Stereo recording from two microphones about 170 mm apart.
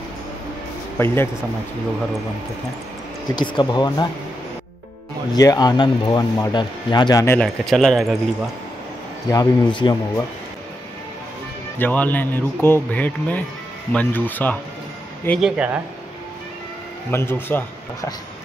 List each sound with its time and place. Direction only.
0.9 s a man's voice: 15° left (ahead or behind)
3.3 s speech: 25° left (ahead or behind)
5.3 s speech: 20° left (ahead or behind)
7.3 s speech: centre (ahead or behind)
9.3 s speech: 25° left (ahead or behind)
11.8 s a man's voice: 10° left (ahead or behind)
15.2 s speech: centre (ahead or behind)
17.1 s a man's voice: 15° left (ahead or behind)